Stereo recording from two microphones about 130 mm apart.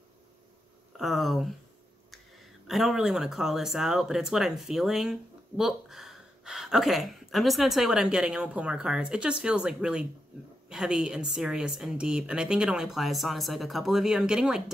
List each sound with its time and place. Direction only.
0.9 s speech: centre (ahead or behind)
2.6 s speech: centre (ahead or behind)